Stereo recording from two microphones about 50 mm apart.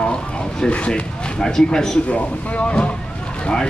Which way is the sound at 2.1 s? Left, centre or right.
Left.